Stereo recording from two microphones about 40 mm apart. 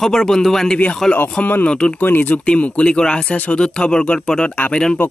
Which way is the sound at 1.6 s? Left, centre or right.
Left.